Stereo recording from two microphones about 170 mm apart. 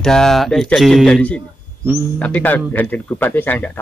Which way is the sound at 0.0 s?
5° left (ahead or behind).